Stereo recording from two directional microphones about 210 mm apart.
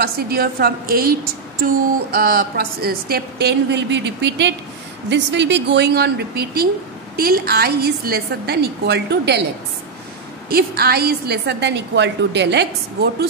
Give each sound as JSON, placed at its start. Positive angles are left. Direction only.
{"t": 0.0, "sound": "speech", "side_deg": -45}
{"t": 2.1, "sound": "speech", "side_deg": -45}
{"t": 10.5, "sound": "speech", "side_deg": -45}